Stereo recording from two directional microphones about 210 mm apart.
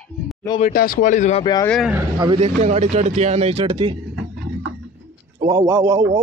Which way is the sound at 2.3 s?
30° right (ahead or behind).